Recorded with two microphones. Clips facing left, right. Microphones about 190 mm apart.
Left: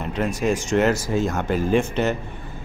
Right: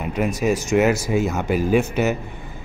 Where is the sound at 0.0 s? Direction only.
10° right (ahead or behind).